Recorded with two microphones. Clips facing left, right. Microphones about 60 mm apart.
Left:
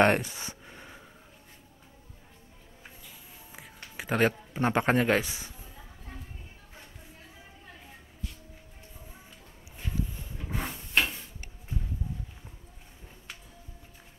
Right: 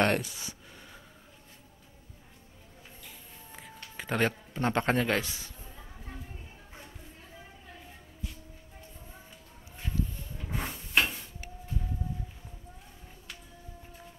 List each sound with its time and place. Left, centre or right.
0.0 s a sound: left
3.9 s a man's voice: centre
9.9 s drawer open or close: centre